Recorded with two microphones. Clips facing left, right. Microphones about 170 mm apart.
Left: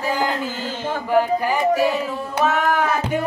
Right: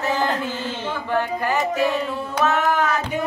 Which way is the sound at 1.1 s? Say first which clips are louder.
Left 4 dB; 10° left (ahead or behind).